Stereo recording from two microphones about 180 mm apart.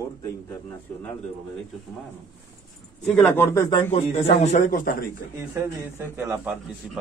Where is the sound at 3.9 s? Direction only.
35° left (ahead or behind); by 5.0 s 50° left (ahead or behind).